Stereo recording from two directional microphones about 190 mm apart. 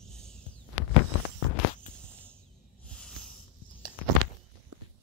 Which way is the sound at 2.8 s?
5° left (ahead or behind).